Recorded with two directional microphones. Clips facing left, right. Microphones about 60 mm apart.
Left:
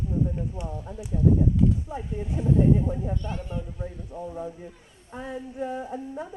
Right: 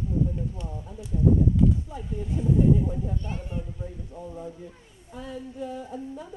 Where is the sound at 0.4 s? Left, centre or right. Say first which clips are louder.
Left 2 dB; left.